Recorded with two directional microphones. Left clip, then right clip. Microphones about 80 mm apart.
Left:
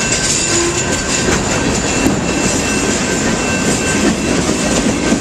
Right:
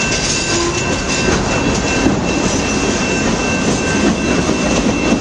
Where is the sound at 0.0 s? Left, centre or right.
Centre.